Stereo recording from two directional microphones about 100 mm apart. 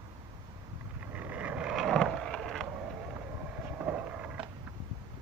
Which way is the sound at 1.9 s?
5° left (ahead or behind).